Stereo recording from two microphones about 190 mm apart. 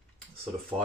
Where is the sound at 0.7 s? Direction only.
25° right (ahead or behind).